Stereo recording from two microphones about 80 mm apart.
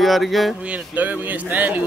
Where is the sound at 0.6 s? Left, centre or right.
Centre.